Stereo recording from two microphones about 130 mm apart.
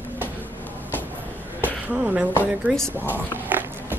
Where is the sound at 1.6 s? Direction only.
10° right (ahead or behind).